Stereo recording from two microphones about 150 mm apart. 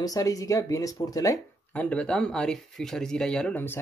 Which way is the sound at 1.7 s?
10° left (ahead or behind).